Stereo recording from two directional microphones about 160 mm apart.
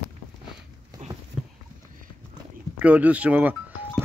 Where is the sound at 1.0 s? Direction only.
50° right (ahead or behind).